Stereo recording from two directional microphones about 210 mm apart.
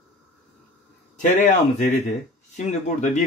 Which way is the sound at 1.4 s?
35° left (ahead or behind).